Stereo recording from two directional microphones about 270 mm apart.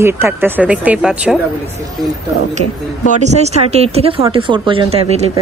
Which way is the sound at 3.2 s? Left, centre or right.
Right.